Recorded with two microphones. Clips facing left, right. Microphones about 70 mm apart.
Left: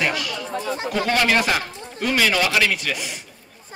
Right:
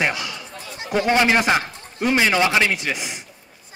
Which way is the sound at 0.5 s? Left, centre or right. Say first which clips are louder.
Left 9 dB; left.